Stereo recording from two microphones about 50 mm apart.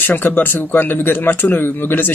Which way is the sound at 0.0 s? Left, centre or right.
Left.